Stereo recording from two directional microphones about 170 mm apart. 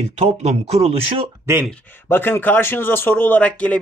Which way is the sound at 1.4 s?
15° right (ahead or behind).